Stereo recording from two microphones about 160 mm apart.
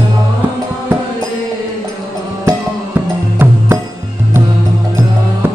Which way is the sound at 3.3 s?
15° right (ahead or behind).